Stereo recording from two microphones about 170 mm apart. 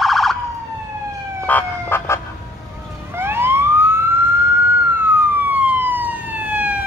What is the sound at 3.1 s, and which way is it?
Police car, 15° right (ahead or behind).